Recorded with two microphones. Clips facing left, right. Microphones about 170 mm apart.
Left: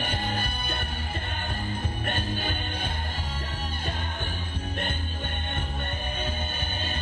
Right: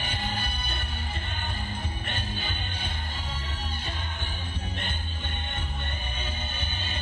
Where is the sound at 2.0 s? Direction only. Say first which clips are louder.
Left 8 dB; 50° left (ahead or behind).